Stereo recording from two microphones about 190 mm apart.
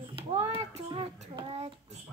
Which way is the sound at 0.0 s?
30° right (ahead or behind).